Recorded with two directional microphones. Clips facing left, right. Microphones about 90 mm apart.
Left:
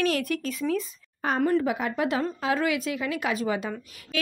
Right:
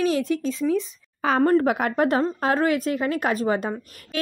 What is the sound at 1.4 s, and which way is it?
Speech, 40° right (ahead or behind).